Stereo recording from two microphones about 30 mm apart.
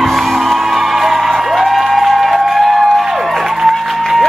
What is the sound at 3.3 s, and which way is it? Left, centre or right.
Music, centre.